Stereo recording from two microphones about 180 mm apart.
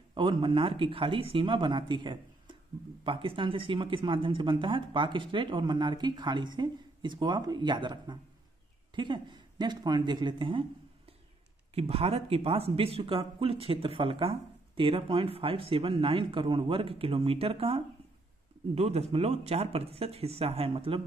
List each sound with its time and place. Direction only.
0.1 s speech: 25° right (ahead or behind)
11.7 s speech: 35° right (ahead or behind)